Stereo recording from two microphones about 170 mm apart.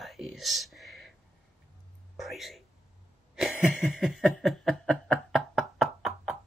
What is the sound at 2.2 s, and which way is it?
Speech, centre (ahead or behind).